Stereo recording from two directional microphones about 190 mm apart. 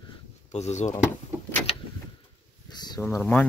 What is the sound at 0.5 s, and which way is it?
Speech, 35° left (ahead or behind).